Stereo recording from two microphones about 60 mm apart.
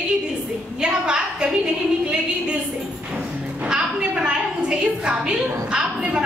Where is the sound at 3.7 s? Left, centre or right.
Centre.